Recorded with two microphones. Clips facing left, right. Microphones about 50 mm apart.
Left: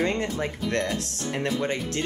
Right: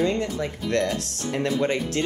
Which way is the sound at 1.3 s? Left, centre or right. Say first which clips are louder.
Right 3 dB; centre.